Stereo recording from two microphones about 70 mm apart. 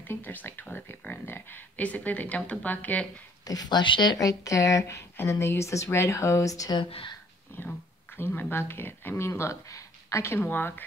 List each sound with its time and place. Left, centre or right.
0.1 s speech: left
3.4 s speech: left
8.2 s speech: left